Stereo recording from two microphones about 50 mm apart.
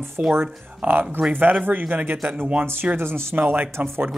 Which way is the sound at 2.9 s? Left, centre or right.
Right.